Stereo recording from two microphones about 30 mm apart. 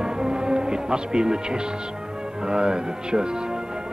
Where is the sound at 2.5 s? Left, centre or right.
Right.